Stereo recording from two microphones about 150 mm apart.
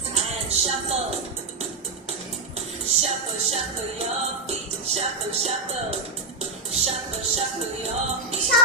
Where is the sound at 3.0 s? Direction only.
45° right (ahead or behind).